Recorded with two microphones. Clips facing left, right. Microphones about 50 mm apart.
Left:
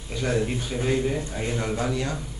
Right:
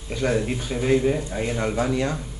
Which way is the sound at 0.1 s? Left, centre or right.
Centre.